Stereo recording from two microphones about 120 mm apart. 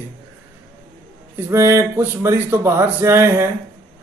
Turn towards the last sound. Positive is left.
turn(degrees=-20)  # may be behind; listen again after turning